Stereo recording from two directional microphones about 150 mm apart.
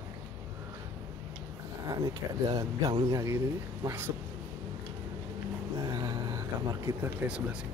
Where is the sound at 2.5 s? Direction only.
25° right (ahead or behind).